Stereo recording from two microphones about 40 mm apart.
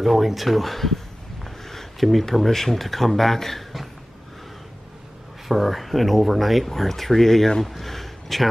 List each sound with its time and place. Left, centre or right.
0.0 s speech: centre
5.5 s speech: centre